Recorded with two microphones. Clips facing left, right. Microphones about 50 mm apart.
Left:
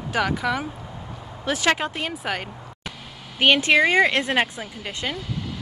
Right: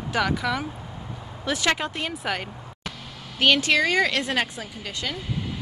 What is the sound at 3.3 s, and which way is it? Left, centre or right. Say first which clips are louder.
A woman's voice: left 3 dB; left.